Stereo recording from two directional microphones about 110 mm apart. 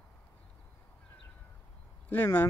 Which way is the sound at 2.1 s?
20° left (ahead or behind).